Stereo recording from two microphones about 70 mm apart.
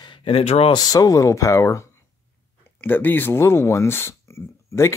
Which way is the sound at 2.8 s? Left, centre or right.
Left.